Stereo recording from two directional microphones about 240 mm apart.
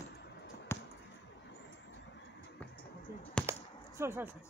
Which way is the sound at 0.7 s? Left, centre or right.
Centre.